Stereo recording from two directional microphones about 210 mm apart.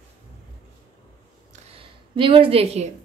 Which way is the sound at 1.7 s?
25° right (ahead or behind).